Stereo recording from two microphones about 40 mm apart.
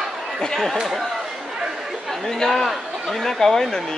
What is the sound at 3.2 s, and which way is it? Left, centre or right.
Speech, centre.